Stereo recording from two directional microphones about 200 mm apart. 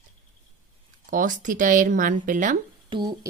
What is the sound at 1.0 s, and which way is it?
Speech, 40° right (ahead or behind).